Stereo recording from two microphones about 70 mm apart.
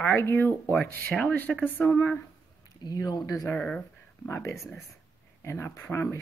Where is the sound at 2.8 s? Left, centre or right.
Left.